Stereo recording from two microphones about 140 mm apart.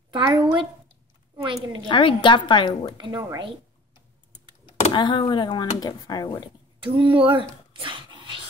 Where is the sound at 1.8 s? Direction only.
35° left (ahead or behind).